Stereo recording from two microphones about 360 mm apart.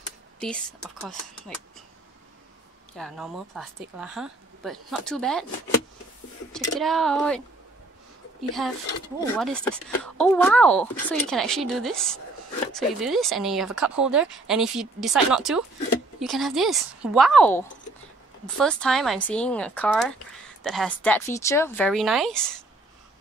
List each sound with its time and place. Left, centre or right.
0.4 s speech: centre
3.0 s speech: centre
6.5 s speech: centre
9.2 s speech: centre